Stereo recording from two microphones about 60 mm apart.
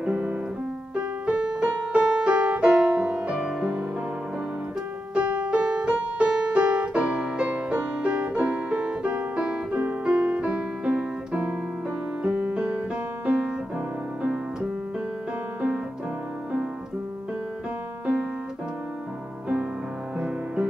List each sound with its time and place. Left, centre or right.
0.0 s piano: centre
0.9 s keyboard: right
3.0 s music: centre
5.1 s music: right